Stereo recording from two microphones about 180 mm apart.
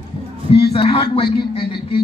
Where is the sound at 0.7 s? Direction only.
30° left (ahead or behind).